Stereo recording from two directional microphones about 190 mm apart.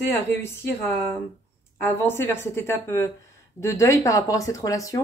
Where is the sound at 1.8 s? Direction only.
10° left (ahead or behind).